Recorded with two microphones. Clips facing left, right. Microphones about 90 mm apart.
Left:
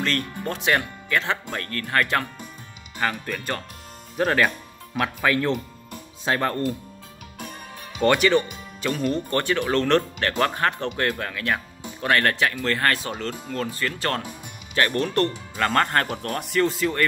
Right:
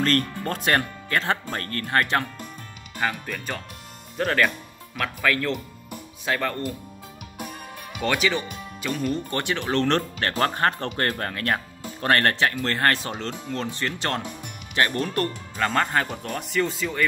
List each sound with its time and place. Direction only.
0.0 s speech: 45° right (ahead or behind)
1.9 s speech: 25° right (ahead or behind)
3.0 s speech: centre (ahead or behind)
4.9 s speech: 20° left (ahead or behind)
8.0 s speech: centre (ahead or behind)
9.3 s speech: 20° right (ahead or behind)
15.0 s speech: 10° right (ahead or behind)